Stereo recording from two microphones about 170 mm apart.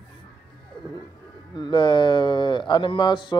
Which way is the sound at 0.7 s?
30° left (ahead or behind).